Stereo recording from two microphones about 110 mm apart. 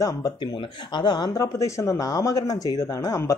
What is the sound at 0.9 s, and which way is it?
Speech, 40° left (ahead or behind).